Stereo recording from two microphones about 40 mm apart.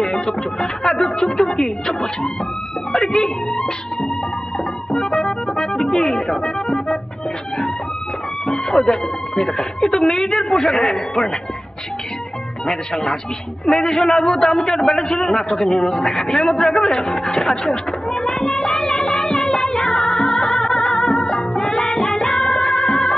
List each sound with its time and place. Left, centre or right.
0.0 s a woman's voice: centre
3.4 s music: centre
8.5 s a woman's voice: centre
12.6 s a woman's voice: centre
13.7 s a sound: centre